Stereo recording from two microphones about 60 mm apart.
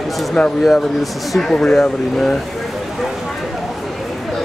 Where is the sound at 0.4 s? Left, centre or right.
Centre.